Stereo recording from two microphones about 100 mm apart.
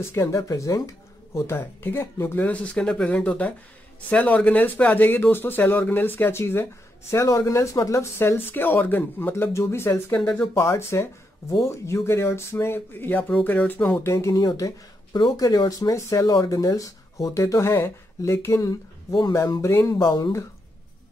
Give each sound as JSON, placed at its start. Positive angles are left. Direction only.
{"t": 0.1, "sound": "speech", "side_deg": 30}
{"t": 14.0, "sound": "speech", "side_deg": 30}